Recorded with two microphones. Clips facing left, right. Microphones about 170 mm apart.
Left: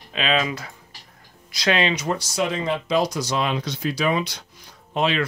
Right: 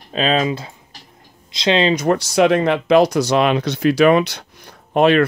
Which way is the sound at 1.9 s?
65° right (ahead or behind).